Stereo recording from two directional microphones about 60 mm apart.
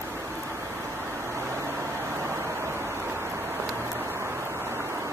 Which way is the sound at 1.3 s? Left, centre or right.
Right.